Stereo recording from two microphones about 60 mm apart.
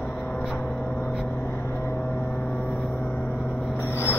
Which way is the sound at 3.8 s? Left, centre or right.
Left.